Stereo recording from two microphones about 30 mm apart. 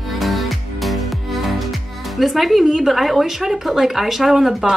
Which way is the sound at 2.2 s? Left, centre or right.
Centre.